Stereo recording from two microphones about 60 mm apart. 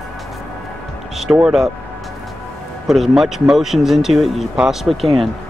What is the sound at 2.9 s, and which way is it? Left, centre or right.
A man's voice, centre.